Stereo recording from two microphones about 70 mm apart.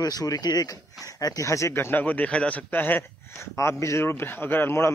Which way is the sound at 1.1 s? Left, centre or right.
Left.